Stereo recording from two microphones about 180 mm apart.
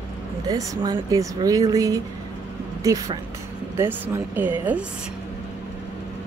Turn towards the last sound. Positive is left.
turn(degrees=-10)  # may be behind; listen again after turning